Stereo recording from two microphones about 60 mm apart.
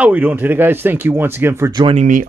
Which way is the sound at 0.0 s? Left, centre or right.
Right.